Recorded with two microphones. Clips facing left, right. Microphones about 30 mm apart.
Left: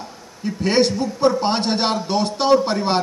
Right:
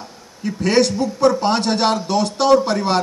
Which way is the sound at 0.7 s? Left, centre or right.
Centre.